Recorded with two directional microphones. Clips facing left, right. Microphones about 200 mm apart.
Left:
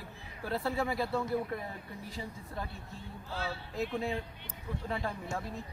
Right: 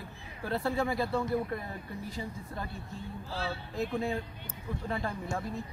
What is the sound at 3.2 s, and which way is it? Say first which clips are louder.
Speech: right 1 dB; 30° right (ahead or behind).